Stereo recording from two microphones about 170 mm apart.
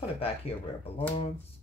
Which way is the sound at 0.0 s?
35° left (ahead or behind).